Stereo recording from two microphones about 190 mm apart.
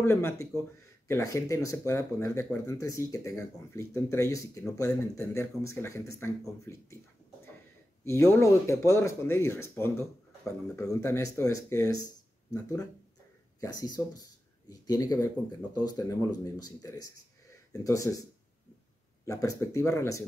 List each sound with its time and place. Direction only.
0.0 s speech: 15° left (ahead or behind)
8.0 s speech: 15° left (ahead or behind)
13.6 s speech: 20° left (ahead or behind)
19.2 s speech: 15° left (ahead or behind)